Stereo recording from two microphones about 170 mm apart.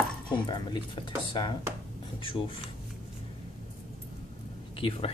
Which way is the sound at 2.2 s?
30° left (ahead or behind).